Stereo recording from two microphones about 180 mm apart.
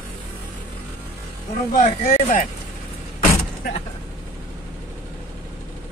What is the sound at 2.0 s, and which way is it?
Speech, 40° left (ahead or behind).